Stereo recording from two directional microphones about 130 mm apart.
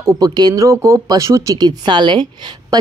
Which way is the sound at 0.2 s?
30° right (ahead or behind).